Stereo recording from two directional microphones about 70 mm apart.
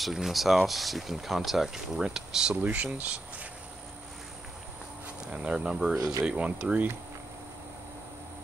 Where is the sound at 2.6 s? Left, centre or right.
Right.